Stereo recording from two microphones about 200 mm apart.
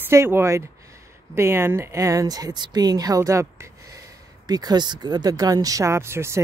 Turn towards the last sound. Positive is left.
turn(degrees=-15)  # may be behind; listen again after turning